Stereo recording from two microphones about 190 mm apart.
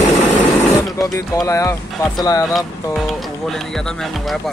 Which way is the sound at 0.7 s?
15° left (ahead or behind).